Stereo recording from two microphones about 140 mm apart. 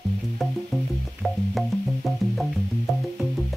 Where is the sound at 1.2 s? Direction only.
Centre (ahead or behind).